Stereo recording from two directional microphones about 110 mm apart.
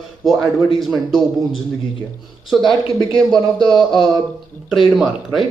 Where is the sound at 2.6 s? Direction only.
50° left (ahead or behind).